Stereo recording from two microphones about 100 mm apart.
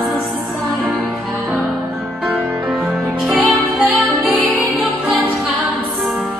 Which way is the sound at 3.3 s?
20° right (ahead or behind).